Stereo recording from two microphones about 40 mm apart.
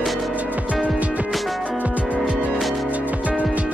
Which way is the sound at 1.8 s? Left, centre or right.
Right.